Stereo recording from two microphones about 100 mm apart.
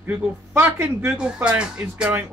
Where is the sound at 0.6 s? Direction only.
20° right (ahead or behind).